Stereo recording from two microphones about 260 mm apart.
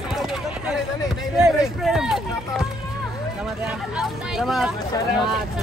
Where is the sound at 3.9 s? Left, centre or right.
Centre.